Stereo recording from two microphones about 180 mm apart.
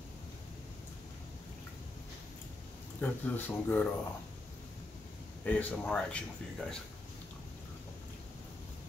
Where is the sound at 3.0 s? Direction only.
10° left (ahead or behind).